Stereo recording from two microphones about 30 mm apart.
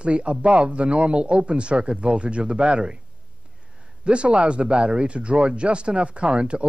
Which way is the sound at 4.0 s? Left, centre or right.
Right.